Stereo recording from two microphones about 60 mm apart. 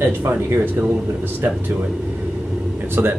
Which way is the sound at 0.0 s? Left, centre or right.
Right.